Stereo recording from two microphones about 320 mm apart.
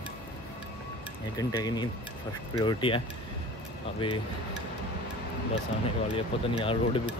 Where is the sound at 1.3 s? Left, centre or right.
Centre.